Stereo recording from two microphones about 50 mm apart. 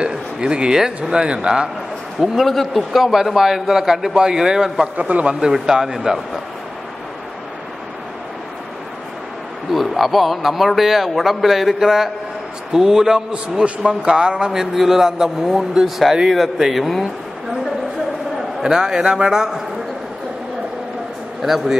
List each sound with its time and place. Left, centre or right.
0.0 s a man's voice: centre
2.1 s a man's voice: centre
4.9 s a man's voice: right; by 6.2 s centre
9.7 s a man's voice: centre
18.6 s a man's voice: centre
21.4 s a man's voice: centre